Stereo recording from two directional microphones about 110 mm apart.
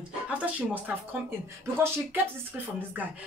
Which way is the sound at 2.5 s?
10° right (ahead or behind).